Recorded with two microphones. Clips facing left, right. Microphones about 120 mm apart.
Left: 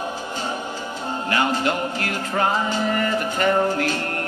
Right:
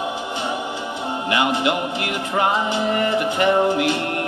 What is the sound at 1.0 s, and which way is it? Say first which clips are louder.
Music: right 2 dB; 15° right (ahead or behind).